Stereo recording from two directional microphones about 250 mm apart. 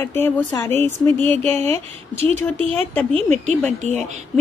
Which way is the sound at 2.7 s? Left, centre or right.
Centre.